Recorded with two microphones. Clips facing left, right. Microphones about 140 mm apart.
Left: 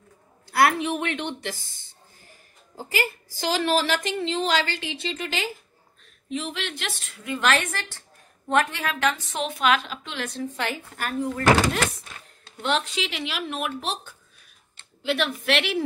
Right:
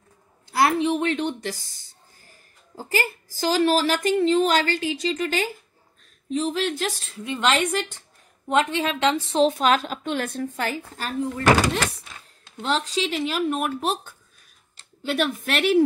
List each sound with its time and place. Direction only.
0.5 s a woman's voice: 30° right (ahead or behind); by 10.5 s 50° right (ahead or behind)
10.6 s a woman's voice: 40° right (ahead or behind)
12.6 s a woman's voice: 35° right (ahead or behind)